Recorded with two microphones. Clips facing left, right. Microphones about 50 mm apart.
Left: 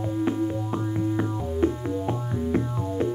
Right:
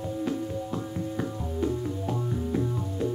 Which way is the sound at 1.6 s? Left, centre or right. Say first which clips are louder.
Left 4 dB; left.